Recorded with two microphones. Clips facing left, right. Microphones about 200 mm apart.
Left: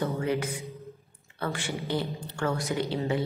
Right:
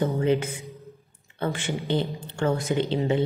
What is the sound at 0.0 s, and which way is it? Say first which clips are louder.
Music: right 5 dB; 20° right (ahead or behind).